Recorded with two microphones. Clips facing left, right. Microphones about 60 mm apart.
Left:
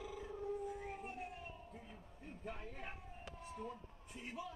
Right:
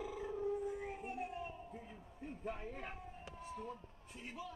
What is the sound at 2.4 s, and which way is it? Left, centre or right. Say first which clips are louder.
Speech: right 3 dB; centre.